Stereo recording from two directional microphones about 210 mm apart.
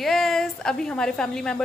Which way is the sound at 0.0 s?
Centre (ahead or behind).